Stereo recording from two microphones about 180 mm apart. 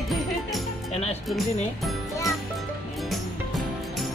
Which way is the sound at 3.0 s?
Centre (ahead or behind).